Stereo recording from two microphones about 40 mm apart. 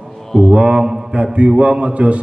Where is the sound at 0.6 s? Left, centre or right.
Right.